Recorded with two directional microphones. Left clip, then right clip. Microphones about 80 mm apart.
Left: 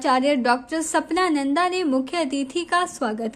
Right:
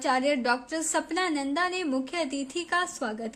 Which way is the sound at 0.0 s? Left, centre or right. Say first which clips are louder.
Left 6 dB; left.